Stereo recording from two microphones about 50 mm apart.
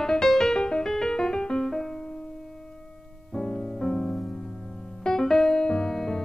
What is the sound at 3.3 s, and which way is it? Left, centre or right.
Music, centre.